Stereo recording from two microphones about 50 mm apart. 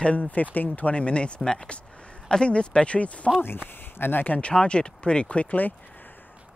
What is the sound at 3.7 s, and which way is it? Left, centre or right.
Speech, left.